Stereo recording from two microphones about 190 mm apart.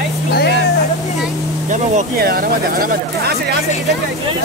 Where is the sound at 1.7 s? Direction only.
45° right (ahead or behind).